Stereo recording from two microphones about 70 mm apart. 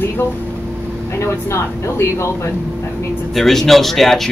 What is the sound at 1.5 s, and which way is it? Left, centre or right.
Speech, left.